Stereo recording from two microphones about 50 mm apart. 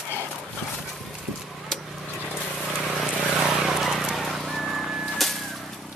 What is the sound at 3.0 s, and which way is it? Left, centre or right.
Vehicle, centre.